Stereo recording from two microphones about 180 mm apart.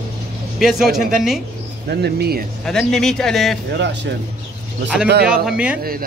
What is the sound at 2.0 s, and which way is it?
Speech, 60° right (ahead or behind).